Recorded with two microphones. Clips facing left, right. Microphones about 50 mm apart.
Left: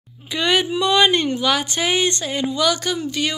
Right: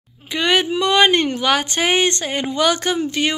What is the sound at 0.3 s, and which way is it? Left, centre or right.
Speech, right.